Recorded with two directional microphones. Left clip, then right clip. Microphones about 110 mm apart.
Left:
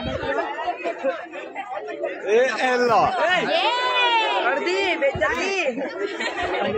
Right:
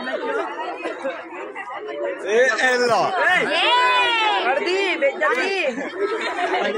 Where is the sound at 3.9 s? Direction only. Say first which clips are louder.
Right 1 dB; 5° right (ahead or behind).